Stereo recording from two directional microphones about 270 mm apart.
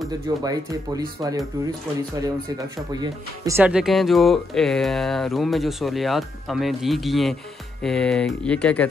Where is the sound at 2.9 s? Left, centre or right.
Centre.